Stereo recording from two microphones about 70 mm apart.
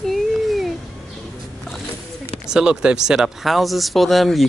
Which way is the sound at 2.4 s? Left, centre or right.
Centre.